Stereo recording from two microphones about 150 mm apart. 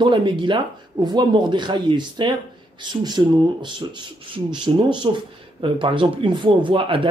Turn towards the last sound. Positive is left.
turn(degrees=-35)  # may be behind; listen again after turning